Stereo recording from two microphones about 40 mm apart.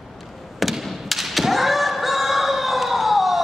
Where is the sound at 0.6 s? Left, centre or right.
Centre.